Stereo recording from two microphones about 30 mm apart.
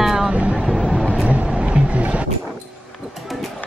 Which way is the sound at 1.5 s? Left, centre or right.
Right.